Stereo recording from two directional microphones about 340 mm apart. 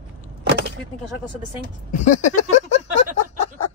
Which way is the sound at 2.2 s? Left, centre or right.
Left.